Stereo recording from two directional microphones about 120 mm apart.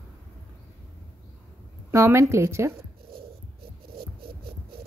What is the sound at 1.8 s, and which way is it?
Speech, 20° right (ahead or behind).